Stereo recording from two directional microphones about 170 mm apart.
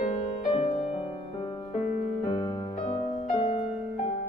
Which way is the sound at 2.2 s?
25° left (ahead or behind).